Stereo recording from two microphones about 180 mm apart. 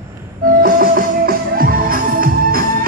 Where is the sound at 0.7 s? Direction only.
55° right (ahead or behind).